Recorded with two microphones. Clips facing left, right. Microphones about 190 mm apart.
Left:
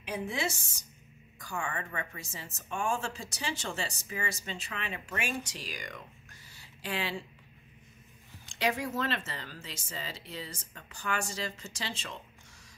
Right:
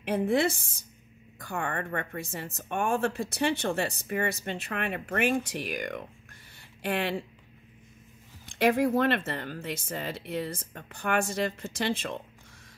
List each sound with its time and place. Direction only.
0.0 s speech: 55° right (ahead or behind)
6.5 s a sound: 55° right (ahead or behind)
8.5 s speech: 55° right (ahead or behind)